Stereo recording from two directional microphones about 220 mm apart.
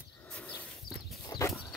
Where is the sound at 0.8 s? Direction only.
20° left (ahead or behind).